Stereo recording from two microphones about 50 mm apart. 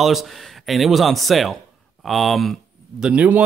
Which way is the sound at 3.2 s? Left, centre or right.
Right.